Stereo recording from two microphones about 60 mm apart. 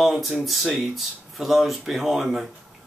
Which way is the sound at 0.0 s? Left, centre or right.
Centre.